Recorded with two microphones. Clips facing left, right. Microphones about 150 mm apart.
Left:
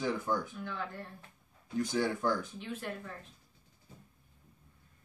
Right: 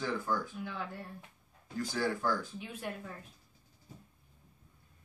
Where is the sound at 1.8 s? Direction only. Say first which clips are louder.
Left 2 dB; 20° left (ahead or behind).